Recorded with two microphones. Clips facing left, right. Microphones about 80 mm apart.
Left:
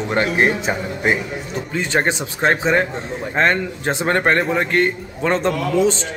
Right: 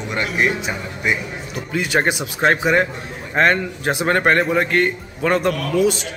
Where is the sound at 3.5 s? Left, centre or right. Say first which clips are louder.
Even; centre.